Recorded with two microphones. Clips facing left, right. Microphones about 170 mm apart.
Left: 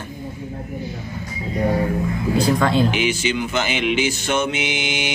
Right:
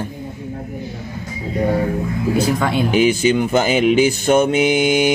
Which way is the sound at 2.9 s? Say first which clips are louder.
Right 7 dB; 40° right (ahead or behind).